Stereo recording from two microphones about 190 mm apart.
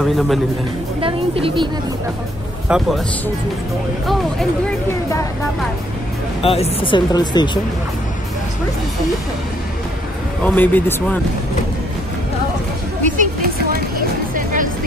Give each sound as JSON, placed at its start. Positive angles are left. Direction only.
{"t": 0.0, "sound": "speech", "side_deg": 0}
{"t": 1.0, "sound": "a woman's voice", "side_deg": -30}
{"t": 2.7, "sound": "speech", "side_deg": -5}
{"t": 4.0, "sound": "speech", "side_deg": 0}
{"t": 6.4, "sound": "speech", "side_deg": 30}
{"t": 10.4, "sound": "speech", "side_deg": 10}
{"t": 13.2, "sound": "vehicle", "side_deg": -50}
{"t": 14.3, "sound": "music", "side_deg": -45}